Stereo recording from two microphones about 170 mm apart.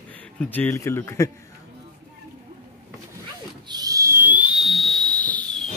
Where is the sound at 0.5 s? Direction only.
15° left (ahead or behind).